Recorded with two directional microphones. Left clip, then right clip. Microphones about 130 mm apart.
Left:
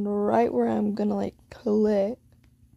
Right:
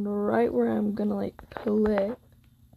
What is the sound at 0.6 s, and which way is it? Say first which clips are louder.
Speech: left 1 dB; 25° left (ahead or behind).